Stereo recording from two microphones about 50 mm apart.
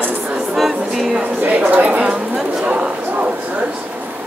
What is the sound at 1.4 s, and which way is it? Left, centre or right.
Speech, right.